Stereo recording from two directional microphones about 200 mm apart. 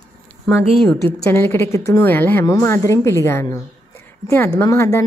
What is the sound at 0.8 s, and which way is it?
A woman's voice, 15° left (ahead or behind).